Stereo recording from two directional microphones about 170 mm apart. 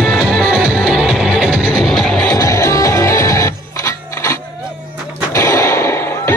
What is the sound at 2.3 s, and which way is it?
Music, 20° left (ahead or behind).